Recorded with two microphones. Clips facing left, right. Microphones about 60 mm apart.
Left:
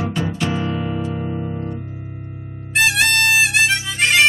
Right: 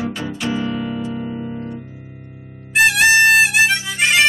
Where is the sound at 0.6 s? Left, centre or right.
Left.